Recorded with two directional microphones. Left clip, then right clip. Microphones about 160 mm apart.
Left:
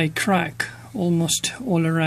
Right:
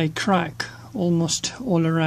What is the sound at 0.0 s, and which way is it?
Speech, 5° left (ahead or behind).